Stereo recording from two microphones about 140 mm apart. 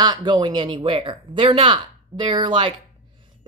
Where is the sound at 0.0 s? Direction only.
30° right (ahead or behind).